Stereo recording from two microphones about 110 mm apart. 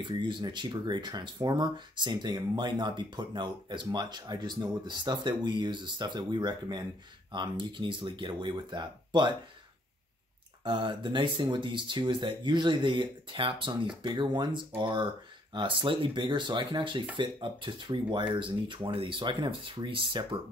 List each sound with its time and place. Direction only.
0.0 s speech: 45° right (ahead or behind)
10.6 s speech: 50° right (ahead or behind)